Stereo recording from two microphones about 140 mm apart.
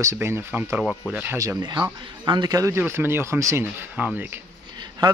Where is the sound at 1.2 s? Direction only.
20° right (ahead or behind).